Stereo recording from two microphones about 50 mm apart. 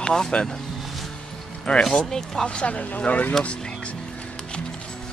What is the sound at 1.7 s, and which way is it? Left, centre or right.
Speech, left.